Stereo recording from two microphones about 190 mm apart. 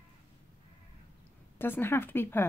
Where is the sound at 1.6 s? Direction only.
10° left (ahead or behind).